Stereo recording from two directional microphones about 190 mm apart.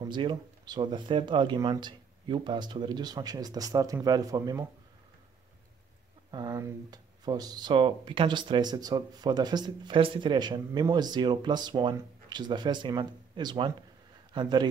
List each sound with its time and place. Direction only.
0.0 s speech: 25° right (ahead or behind)
6.3 s a man's voice: 20° right (ahead or behind)